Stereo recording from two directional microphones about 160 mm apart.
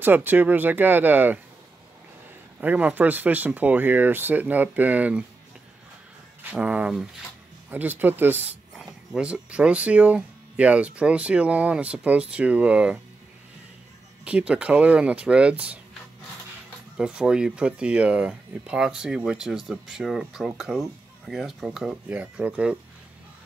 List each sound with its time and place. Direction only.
0.0 s speech: 10° right (ahead or behind)
2.6 s speech: 10° right (ahead or behind)
6.5 s speech: 10° right (ahead or behind)
14.2 s speech: 5° right (ahead or behind)
16.9 s speech: 5° right (ahead or behind)